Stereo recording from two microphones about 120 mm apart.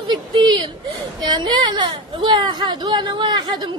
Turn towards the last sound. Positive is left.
turn(degrees=-35)  # may be behind; listen again after turning